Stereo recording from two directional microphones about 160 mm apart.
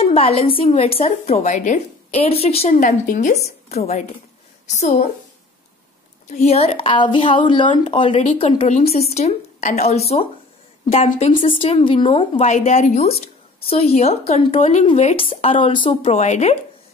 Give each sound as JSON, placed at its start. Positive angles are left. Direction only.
{"t": 0.0, "sound": "a woman's voice", "side_deg": 35}
{"t": 2.7, "sound": "a woman's voice", "side_deg": 55}
{"t": 3.6, "sound": "a woman's voice", "side_deg": 45}
{"t": 6.3, "sound": "a woman's voice", "side_deg": 40}
{"t": 16.0, "sound": "a woman's voice", "side_deg": 45}